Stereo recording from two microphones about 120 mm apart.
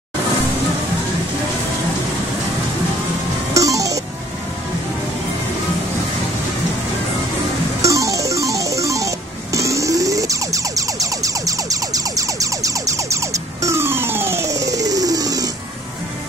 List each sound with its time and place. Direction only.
3.5 s music: 30° right (ahead or behind)
7.8 s music: 25° right (ahead or behind)